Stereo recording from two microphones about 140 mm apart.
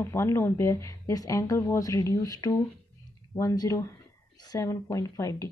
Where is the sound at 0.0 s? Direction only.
20° left (ahead or behind).